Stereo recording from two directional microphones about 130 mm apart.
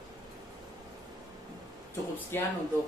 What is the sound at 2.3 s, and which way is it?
Speech, 15° left (ahead or behind).